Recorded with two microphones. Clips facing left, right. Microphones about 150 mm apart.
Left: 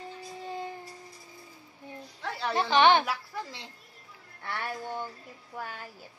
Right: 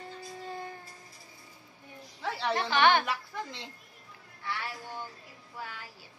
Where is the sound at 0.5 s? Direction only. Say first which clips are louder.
Left 4 dB; 15° left (ahead or behind).